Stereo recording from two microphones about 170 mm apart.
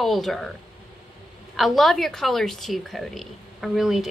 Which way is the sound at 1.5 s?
Centre (ahead or behind).